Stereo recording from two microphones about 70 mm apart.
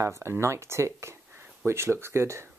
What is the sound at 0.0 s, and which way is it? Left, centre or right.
Speech, right.